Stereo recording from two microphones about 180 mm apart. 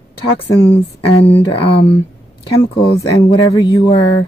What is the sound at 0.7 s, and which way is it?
Speech, 30° left (ahead or behind).